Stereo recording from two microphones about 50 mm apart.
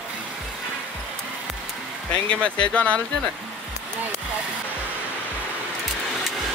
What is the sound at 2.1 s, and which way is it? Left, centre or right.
Speech, left.